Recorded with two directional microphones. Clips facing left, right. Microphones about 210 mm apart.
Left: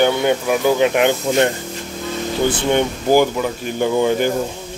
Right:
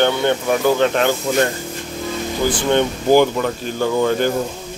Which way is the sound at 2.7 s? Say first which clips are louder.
Right 2 dB; 10° left (ahead or behind).